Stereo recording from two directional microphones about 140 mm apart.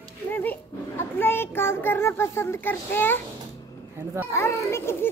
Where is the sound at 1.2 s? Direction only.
15° left (ahead or behind).